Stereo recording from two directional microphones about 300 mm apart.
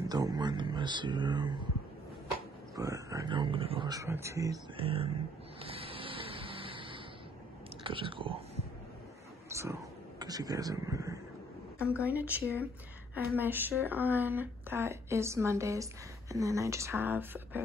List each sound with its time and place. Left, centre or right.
0.1 s a woman's voice: centre
2.7 s a woman's voice: centre
5.6 s vehicle: centre
7.8 s a woman's voice: centre
9.5 s a woman's voice: centre